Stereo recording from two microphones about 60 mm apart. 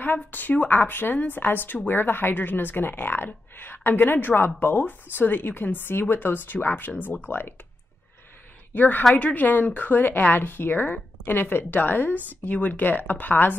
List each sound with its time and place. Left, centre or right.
0.0 s speech: left
8.7 s speech: left